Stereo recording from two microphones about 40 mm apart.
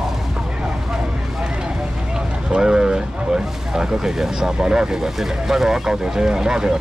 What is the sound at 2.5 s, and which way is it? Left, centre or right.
Speech, right.